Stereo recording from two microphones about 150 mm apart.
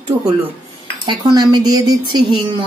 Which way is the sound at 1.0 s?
30° right (ahead or behind).